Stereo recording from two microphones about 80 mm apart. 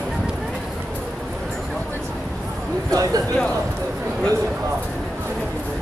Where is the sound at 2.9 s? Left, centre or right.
Right.